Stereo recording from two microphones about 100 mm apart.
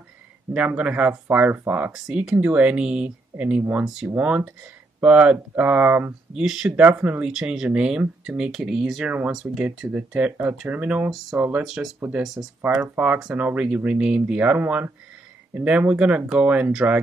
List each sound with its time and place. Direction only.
0.5 s speech: 15° right (ahead or behind)
1.9 s speech: 5° right (ahead or behind)
6.3 s speech: 5° right (ahead or behind)
6.9 s speech: 15° right (ahead or behind)
7.2 s speech: 5° right (ahead or behind)
11.6 s speech: 5° right (ahead or behind)
12.4 s speech: 20° right (ahead or behind)